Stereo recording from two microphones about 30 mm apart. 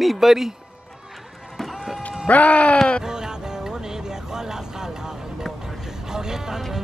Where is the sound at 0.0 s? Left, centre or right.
Centre.